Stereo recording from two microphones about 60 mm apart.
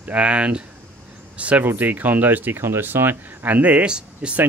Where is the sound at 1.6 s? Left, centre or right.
Right; by 4.4 s centre.